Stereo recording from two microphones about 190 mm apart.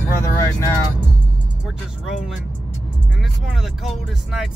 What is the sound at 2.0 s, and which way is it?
Speech, 5° right (ahead or behind).